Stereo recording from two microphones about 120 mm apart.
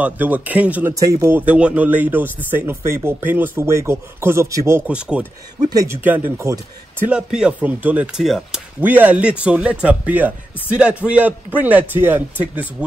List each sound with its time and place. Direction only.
0.0 s speech: 15° right (ahead or behind)
0.9 s speech: 25° right (ahead or behind)
1.5 s speech: 10° right (ahead or behind)
4.8 s speech: 10° right (ahead or behind)
5.7 s speech: 30° right (ahead or behind)
5.9 s speech: 15° right (ahead or behind)
7.1 s speech: 5° right (ahead or behind)